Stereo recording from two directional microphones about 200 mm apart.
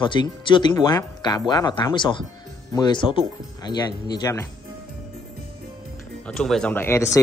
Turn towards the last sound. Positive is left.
turn(degrees=10)  # may be behind; listen again after turning